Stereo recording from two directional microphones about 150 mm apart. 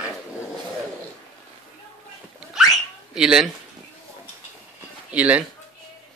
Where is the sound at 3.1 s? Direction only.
5° right (ahead or behind).